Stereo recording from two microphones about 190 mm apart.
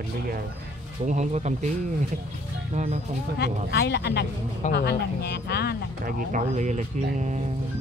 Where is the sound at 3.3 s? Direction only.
60° left (ahead or behind).